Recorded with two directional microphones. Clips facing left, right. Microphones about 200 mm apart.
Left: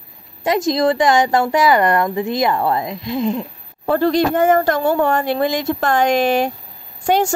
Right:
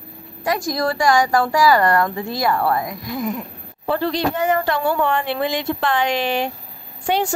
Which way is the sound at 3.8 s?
45° left (ahead or behind).